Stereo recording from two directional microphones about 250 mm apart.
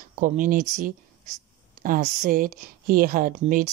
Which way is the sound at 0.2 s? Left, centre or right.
Right.